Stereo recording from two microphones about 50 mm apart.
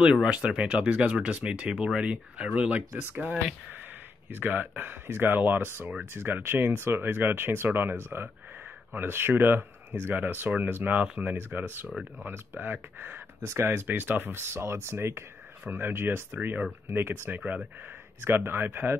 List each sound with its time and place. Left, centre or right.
0.0 s speech: right
1.7 s speech: centre
3.0 s speech: right
13.4 s speech: right
13.7 s speech: right
14.3 s speech: right
16.3 s speech: right
16.8 s speech: right